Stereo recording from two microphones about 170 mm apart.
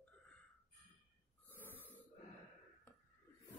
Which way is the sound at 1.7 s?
10° left (ahead or behind).